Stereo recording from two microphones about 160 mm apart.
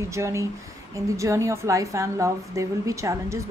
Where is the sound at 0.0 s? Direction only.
15° right (ahead or behind).